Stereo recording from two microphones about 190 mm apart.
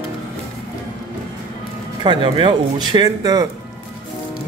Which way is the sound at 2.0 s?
25° right (ahead or behind).